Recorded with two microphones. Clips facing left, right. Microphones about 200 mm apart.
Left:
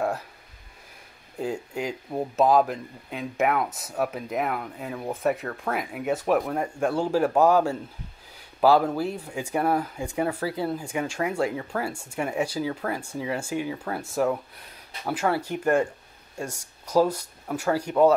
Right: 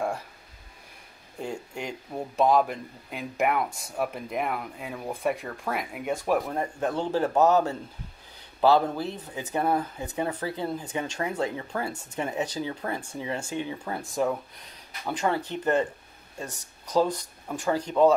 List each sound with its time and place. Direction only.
1.4 s speech: 5° left (ahead or behind)